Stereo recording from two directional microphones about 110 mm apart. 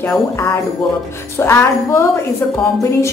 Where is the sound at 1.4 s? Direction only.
25° left (ahead or behind).